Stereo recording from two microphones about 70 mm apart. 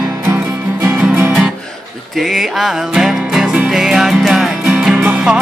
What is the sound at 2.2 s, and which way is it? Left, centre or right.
Music, centre.